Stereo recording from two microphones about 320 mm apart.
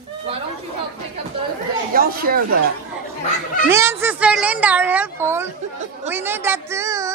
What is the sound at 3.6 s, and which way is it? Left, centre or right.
A woman's voice, centre.